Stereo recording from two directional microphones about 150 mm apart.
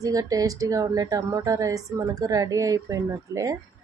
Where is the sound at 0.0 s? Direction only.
25° right (ahead or behind).